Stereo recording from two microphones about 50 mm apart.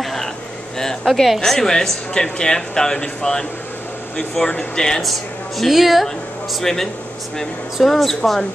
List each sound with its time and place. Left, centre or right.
0.0 s a sound: centre
1.1 s a woman's voice: centre
5.1 s a woman's voice: centre
6.6 s a woman's voice: centre